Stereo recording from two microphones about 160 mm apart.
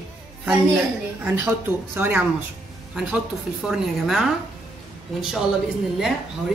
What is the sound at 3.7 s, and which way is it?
Speech, centre (ahead or behind).